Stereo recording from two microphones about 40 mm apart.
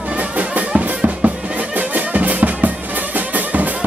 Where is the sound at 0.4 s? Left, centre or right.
Right.